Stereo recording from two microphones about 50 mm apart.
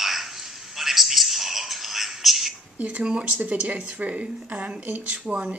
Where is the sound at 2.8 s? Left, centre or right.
Right.